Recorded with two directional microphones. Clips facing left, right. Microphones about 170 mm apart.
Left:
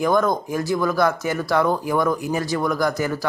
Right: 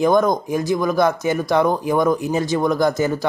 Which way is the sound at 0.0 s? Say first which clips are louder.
Right 3 dB; 20° right (ahead or behind).